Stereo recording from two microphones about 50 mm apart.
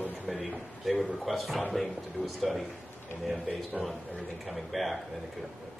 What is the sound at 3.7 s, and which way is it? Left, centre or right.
Speech, right.